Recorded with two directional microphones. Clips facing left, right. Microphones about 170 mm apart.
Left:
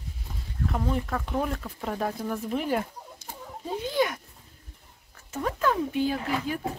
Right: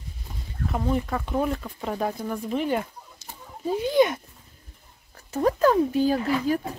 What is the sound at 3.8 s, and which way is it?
Speech, 20° right (ahead or behind).